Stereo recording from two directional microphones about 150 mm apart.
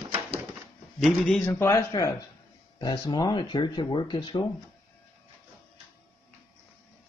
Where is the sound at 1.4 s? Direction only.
20° left (ahead or behind).